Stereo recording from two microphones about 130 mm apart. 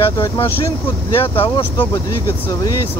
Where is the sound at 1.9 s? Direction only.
25° left (ahead or behind).